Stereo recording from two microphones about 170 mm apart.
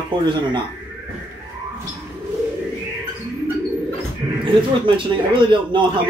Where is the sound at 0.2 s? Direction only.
25° right (ahead or behind).